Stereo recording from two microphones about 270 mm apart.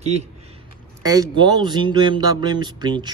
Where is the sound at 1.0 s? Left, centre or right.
Centre.